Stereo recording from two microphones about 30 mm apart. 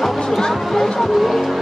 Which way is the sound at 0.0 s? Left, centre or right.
Centre.